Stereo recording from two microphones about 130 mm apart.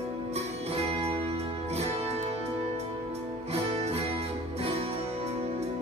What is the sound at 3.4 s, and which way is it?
Music, 50° right (ahead or behind).